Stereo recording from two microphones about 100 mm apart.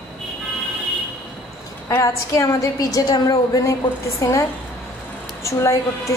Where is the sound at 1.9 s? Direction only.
35° left (ahead or behind).